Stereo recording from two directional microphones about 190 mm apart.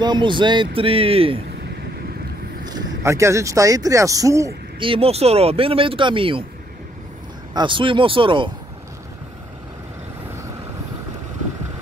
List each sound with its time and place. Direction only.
0.0 s speech: 25° right (ahead or behind)
2.6 s speech: 20° right (ahead or behind)
4.7 s speech: 25° right (ahead or behind)
7.5 s speech: 25° right (ahead or behind)